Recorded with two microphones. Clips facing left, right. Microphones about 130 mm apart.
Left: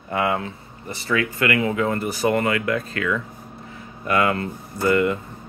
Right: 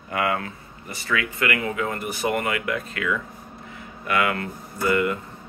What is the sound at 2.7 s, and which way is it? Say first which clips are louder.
Speech: left 3 dB; 30° left (ahead or behind).